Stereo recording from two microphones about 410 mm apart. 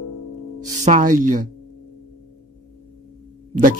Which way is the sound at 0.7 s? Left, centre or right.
Centre.